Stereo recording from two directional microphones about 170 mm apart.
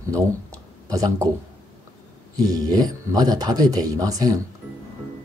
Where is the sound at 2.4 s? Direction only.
20° right (ahead or behind).